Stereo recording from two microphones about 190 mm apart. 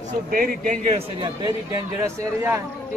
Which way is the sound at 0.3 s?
45° right (ahead or behind).